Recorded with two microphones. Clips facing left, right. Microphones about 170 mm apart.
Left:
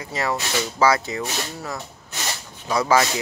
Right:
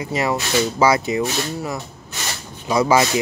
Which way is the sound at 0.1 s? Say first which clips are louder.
Right 4 dB; 15° right (ahead or behind).